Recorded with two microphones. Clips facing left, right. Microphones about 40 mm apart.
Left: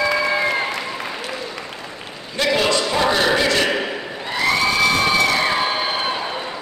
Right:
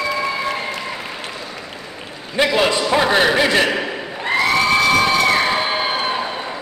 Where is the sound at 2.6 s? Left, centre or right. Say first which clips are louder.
Right 2 dB; centre.